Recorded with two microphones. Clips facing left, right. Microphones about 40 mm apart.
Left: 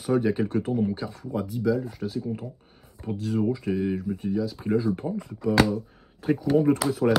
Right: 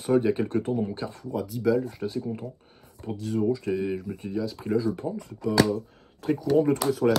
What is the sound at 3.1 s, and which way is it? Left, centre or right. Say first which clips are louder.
Speech: left 2 dB; left.